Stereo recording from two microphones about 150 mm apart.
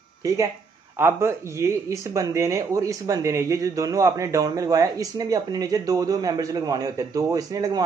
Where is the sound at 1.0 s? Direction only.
15° right (ahead or behind).